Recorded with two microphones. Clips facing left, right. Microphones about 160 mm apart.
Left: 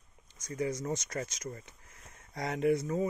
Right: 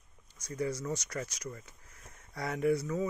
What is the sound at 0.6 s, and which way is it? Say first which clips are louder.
Speech: left 1 dB; 20° left (ahead or behind).